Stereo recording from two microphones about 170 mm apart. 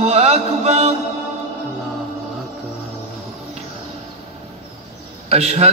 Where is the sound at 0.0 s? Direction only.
35° right (ahead or behind).